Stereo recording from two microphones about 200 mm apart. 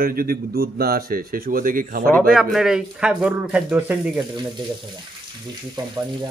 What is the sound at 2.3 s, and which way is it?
Speech, centre (ahead or behind).